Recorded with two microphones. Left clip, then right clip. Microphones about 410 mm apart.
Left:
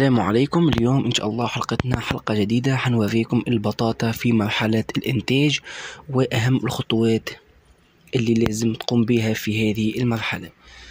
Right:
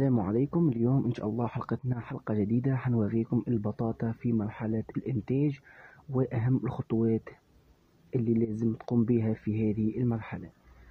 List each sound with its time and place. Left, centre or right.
0.0 s speech: right